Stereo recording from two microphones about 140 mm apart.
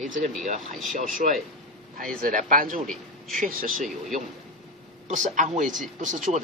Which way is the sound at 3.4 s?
85° right.